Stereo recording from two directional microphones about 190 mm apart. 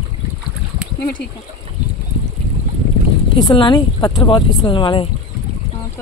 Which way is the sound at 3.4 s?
25° left (ahead or behind).